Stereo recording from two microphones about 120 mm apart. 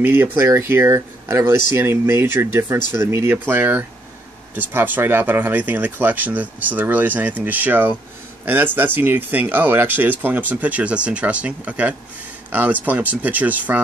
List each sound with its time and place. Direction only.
0.0 s speech: 15° right (ahead or behind)